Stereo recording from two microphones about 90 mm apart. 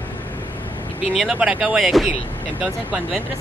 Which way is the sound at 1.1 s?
5° right (ahead or behind).